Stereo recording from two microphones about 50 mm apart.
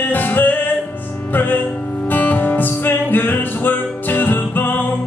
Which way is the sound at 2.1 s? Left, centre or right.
Left.